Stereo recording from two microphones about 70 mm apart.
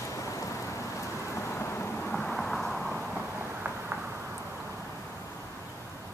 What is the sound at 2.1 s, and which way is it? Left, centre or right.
Vehicle, centre.